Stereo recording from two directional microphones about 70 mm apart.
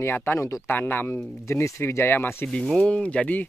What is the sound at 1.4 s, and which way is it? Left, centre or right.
Speech, left.